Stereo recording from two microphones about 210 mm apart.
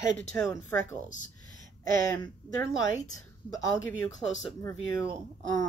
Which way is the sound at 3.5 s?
Centre (ahead or behind).